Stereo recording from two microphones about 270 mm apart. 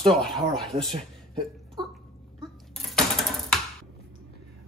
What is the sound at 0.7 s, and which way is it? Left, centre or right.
Speech, centre.